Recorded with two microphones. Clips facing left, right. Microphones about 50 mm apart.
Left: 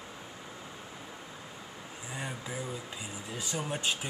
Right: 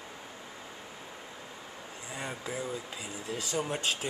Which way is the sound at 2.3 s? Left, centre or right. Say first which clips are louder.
Right 4 dB; centre.